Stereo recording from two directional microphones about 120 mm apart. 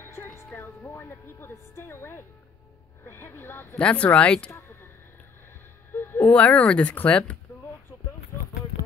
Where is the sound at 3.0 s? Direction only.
20° left (ahead or behind).